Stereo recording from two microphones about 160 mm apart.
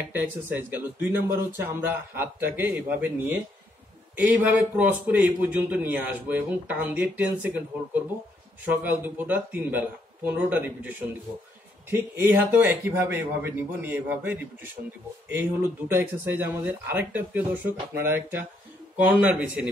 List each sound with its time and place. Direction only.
0.1 s a man's voice: 10° right (ahead or behind)
11.9 s a man's voice: 10° right (ahead or behind)
15.9 s a man's voice: 15° right (ahead or behind)